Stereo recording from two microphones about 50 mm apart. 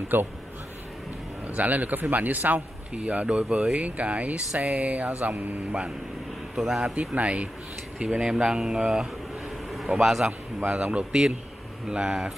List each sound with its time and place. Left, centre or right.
0.1 s a man's voice: right
1.5 s a man's voice: right
3.0 s a man's voice: right
5.7 s speech: centre
7.0 s speech: right
8.0 s speech: centre
9.9 s a man's voice: centre
10.7 s speech: right